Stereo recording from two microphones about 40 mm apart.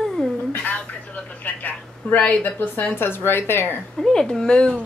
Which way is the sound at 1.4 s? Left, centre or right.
Left.